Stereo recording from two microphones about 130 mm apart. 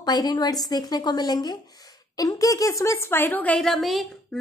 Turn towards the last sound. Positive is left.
turn(degrees=0)  # may be behind; listen again after turning